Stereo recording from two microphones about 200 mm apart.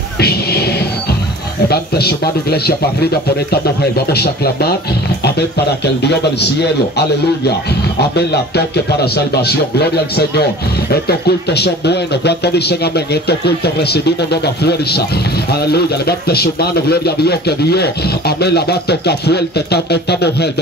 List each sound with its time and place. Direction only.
0.2 s music: 50° left (ahead or behind)
1.7 s speech: 50° left (ahead or behind)
6.6 s speech: 55° left (ahead or behind)
8.5 s speech: 55° left (ahead or behind)